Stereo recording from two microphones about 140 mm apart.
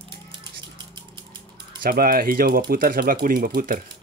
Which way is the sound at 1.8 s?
90° right.